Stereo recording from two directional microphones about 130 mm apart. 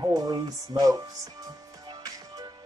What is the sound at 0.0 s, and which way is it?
Music, 30° right (ahead or behind).